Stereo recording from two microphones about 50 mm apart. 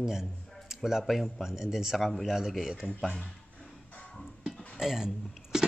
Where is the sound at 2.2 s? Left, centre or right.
Centre.